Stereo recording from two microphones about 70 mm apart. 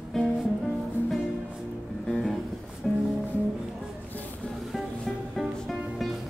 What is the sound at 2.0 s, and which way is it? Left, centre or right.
Music, centre.